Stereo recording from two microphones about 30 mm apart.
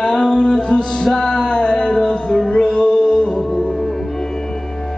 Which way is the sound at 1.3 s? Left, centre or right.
Left.